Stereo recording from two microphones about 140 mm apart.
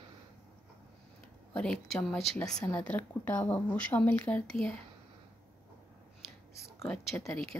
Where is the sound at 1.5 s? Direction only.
5° left (ahead or behind).